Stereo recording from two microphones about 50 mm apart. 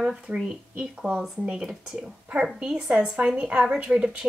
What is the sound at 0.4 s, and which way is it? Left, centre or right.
A woman's voice, centre.